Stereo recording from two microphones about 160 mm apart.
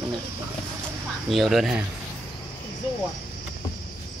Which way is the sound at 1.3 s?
Centre (ahead or behind).